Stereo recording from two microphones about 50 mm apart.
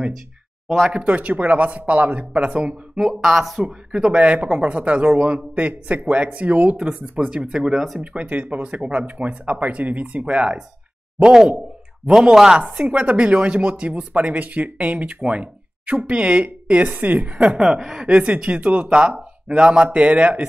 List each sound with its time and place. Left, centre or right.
0.7 s speech: centre
0.9 s speech: right
3.0 s speech: centre
3.6 s speech: right
7.7 s speech: centre
8.0 s speech: right
12.1 s speech: centre
18.0 s speech: right